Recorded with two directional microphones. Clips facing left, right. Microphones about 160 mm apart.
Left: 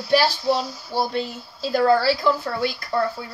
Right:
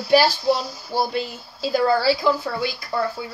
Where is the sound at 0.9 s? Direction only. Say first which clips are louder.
Right 1 dB; 5° right (ahead or behind).